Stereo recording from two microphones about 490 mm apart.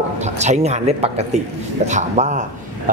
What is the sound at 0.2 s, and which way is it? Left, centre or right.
Speech, centre.